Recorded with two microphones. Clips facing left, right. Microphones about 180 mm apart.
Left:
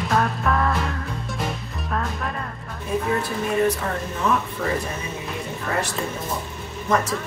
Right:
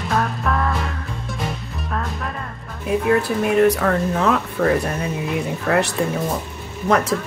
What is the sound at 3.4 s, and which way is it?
Speech, 70° right (ahead or behind).